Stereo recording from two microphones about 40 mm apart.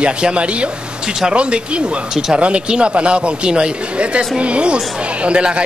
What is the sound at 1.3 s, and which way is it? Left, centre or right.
Speech, right.